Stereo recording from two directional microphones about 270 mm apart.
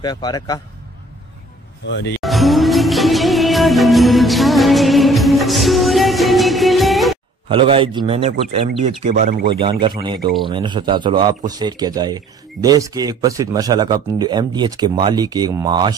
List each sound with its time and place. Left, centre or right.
0.0 s a man's voice: centre
1.9 s speech: left
2.1 s music: centre
7.4 s a man's voice: centre
9.5 s speech: centre